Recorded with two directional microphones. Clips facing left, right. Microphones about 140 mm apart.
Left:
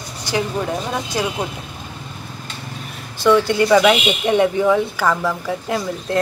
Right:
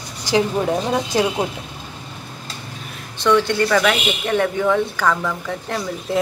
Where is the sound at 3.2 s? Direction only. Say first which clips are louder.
Left 2 dB; 5° left (ahead or behind).